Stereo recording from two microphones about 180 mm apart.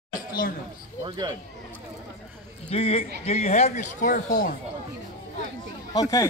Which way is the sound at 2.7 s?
35° left (ahead or behind).